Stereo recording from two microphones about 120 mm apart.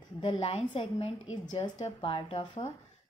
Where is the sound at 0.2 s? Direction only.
50° left (ahead or behind).